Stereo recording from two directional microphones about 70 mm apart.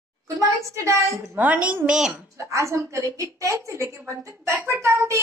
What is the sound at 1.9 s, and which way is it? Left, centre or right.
Speech, centre.